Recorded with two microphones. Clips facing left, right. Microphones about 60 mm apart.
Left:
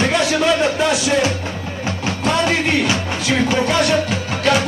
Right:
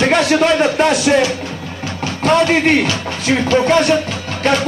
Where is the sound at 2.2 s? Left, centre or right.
Right.